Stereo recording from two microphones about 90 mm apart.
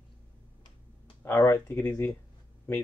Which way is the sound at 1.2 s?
25° left (ahead or behind).